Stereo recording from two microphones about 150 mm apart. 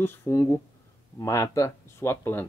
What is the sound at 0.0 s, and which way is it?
Speech, 15° left (ahead or behind).